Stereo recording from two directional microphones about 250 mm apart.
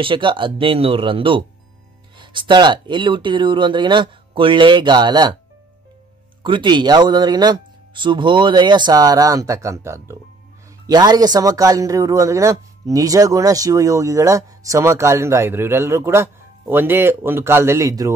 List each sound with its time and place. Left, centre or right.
0.0 s speech: centre
6.4 s speech: centre